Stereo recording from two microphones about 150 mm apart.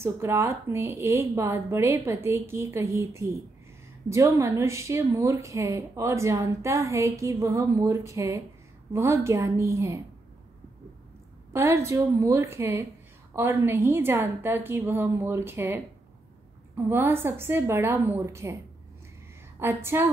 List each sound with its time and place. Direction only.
0.0 s a woman's voice: 15° right (ahead or behind)
11.5 s a woman's voice: 20° right (ahead or behind)
19.6 s speech: 15° right (ahead or behind)